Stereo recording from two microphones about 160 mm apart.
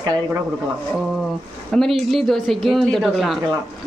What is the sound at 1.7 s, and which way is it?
Speech, centre (ahead or behind).